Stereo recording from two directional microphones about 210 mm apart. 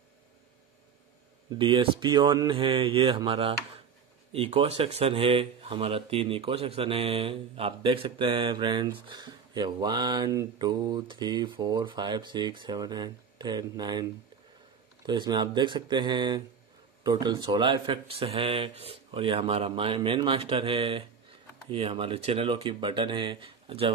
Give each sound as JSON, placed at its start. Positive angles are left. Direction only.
{"t": 1.6, "sound": "speech", "side_deg": -25}